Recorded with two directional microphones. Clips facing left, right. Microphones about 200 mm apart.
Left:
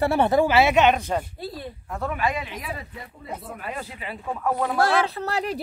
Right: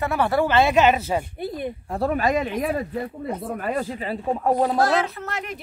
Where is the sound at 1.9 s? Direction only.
35° right (ahead or behind).